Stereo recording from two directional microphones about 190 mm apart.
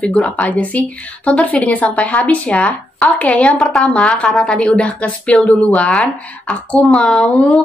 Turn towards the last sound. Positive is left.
turn(degrees=5)  # may be behind; listen again after turning